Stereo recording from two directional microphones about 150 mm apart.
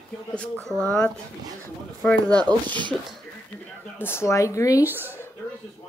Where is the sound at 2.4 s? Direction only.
30° right (ahead or behind).